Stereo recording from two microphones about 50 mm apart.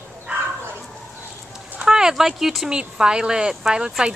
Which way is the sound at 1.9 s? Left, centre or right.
Centre.